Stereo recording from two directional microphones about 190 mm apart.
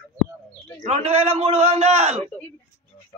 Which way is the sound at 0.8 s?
35° right (ahead or behind).